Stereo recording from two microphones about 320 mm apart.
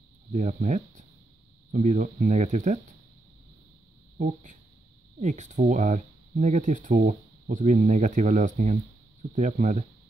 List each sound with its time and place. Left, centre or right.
0.3 s speech: right
4.2 s speech: right